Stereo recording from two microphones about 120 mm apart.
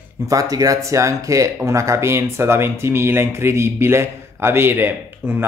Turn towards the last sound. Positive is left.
turn(degrees=-20)  # may be behind; listen again after turning